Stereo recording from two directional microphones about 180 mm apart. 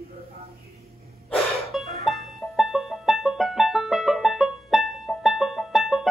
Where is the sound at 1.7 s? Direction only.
Centre (ahead or behind).